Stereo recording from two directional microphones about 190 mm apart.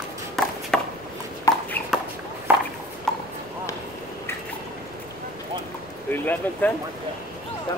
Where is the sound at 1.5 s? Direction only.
15° left (ahead or behind).